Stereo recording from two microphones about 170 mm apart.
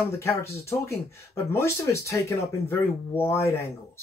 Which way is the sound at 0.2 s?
15° left (ahead or behind).